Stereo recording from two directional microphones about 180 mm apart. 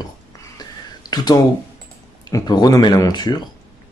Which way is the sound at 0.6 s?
20° left (ahead or behind).